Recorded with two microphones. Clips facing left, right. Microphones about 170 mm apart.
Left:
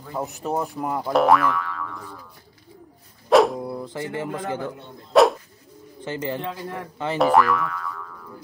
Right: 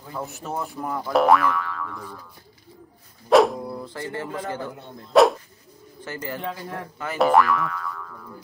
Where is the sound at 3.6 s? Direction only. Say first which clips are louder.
Left 2 dB; 15° left (ahead or behind).